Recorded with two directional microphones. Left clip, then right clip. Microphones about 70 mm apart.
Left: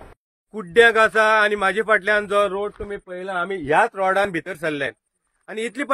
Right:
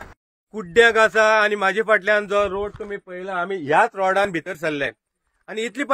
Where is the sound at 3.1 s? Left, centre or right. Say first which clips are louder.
Even; centre.